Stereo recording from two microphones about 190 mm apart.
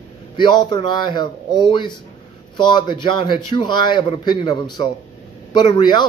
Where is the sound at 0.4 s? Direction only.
25° left (ahead or behind).